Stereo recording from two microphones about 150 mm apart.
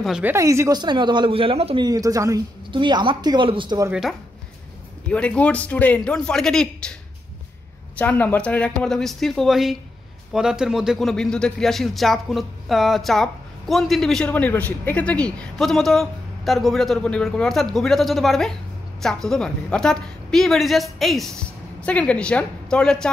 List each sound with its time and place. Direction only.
0.0 s a man's voice: 5° right (ahead or behind)
0.3 s speech: 20° right (ahead or behind); by 1.9 s 40° right (ahead or behind)
1.9 s speech: 25° right (ahead or behind)
5.1 s a man's voice: 5° left (ahead or behind)